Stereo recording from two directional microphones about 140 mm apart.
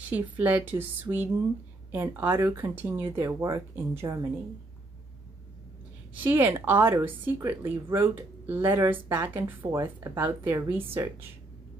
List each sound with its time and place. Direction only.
0.1 s a woman's voice: 10° right (ahead or behind)
6.1 s a woman's voice: 15° right (ahead or behind)